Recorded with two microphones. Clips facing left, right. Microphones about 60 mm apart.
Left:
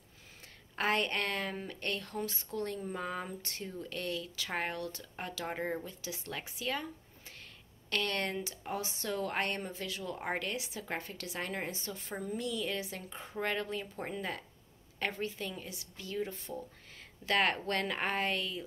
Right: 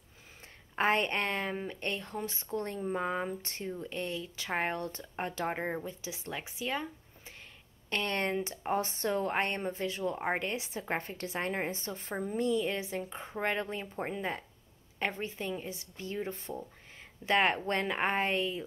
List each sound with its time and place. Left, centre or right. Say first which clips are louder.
0.7 s a woman's voice: right 3 dB; right